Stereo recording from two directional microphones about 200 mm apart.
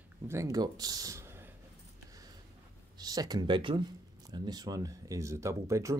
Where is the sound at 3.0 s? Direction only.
20° right (ahead or behind).